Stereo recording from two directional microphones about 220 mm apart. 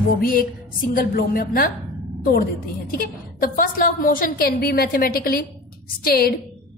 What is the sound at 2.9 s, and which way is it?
A woman's voice, 40° left (ahead or behind).